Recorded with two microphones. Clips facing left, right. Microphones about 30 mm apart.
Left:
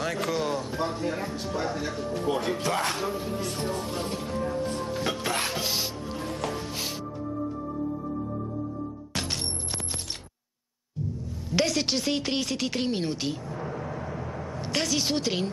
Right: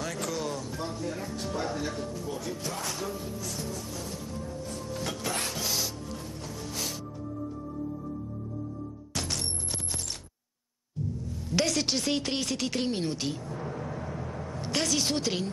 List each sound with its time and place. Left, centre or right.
0.0 s music: left
1.3 s speech: centre
2.1 s speech: left
3.0 s speech: left
3.3 s speech: left
4.9 s music: left
11.0 s a sound: centre